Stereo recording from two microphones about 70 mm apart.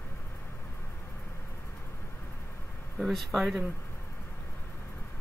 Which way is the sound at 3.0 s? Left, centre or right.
Centre.